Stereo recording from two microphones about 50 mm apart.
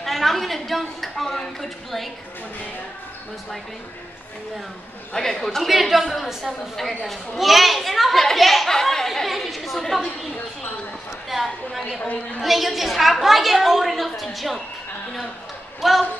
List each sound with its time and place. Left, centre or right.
0.0 s a woman's voice: centre
5.1 s a woman's voice: centre
11.2 s a sound: centre
12.4 s a woman's voice: centre
15.8 s a woman's voice: centre